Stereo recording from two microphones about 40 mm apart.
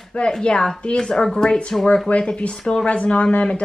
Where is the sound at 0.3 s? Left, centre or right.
Left.